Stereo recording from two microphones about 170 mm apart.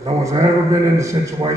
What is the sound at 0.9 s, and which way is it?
Speech, 15° right (ahead or behind).